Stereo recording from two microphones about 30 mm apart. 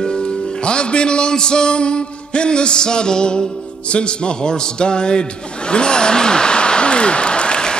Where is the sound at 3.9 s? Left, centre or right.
Left.